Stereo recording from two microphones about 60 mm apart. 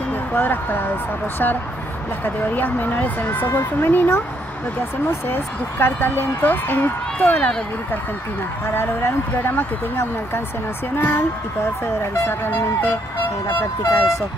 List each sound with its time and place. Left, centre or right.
0.3 s speech: left
2.2 s speech: left
5.3 s speech: left
8.6 s speech: left